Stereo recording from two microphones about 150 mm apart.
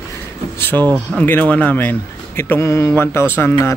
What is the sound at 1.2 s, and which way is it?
Speech, 10° left (ahead or behind).